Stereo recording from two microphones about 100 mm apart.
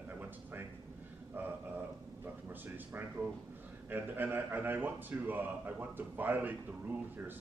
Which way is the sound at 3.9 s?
20° right (ahead or behind).